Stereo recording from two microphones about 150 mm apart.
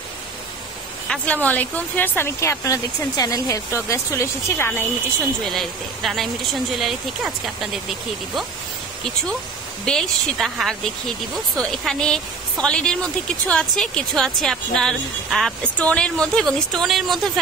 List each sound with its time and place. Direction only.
1.0 s speech: 5° left (ahead or behind)
5.4 s a woman's voice: centre (ahead or behind)
9.8 s a woman's voice: centre (ahead or behind)